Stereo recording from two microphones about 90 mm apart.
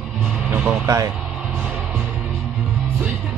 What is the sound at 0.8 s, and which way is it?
Speech, 35° right (ahead or behind).